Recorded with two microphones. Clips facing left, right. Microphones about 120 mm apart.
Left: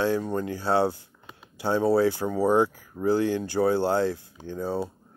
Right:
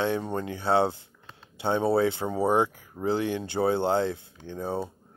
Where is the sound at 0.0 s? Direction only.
25° right (ahead or behind).